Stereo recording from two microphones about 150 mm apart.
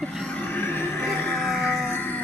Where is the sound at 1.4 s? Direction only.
5° right (ahead or behind).